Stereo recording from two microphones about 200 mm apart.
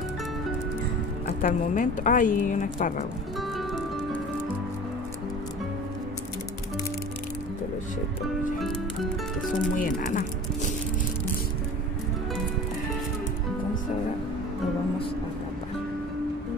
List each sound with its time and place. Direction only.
1.4 s speech: 40° left (ahead or behind)
3.3 s music: centre (ahead or behind)
9.8 s speech: 40° left (ahead or behind)